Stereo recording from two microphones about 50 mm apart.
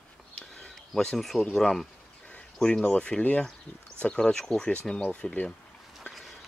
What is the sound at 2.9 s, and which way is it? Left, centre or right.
Speech, left.